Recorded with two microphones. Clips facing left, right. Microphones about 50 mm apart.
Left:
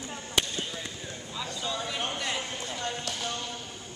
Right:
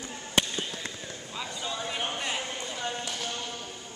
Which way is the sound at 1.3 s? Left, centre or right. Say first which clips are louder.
Left 1 dB; centre.